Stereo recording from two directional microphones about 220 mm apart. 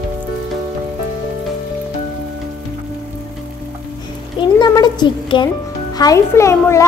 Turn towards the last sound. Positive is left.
turn(degrees=15)  # may be behind; listen again after turning